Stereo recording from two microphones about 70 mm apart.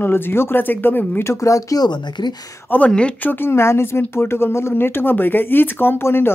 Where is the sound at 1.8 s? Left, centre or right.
Left.